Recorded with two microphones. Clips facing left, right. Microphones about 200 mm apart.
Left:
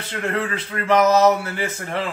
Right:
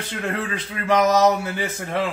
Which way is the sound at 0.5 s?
15° right (ahead or behind).